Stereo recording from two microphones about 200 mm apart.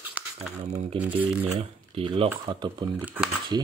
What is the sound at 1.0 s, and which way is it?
Speech, 10° right (ahead or behind).